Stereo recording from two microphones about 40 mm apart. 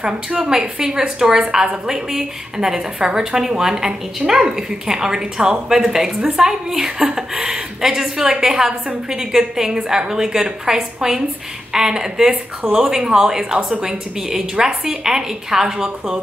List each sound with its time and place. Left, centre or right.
0.0 s a woman's voice: right